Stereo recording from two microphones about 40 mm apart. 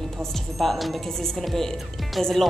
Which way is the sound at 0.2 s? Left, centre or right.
Centre.